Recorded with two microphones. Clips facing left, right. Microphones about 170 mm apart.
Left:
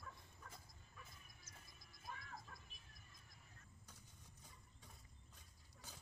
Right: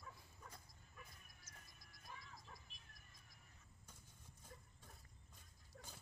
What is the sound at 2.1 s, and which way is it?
Music, 60° left (ahead or behind).